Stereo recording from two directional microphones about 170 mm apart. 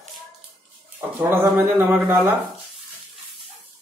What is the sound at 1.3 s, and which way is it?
Speech, 15° right (ahead or behind).